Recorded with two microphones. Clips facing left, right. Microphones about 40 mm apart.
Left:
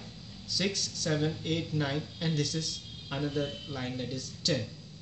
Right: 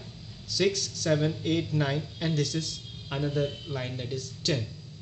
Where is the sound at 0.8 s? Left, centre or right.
Right.